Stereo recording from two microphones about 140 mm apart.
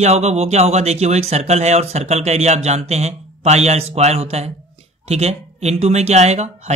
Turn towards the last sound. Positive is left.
turn(degrees=-50)  # may be behind; listen again after turning